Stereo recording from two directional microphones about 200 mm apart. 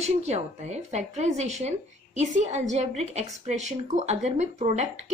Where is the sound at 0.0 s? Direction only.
35° right (ahead or behind).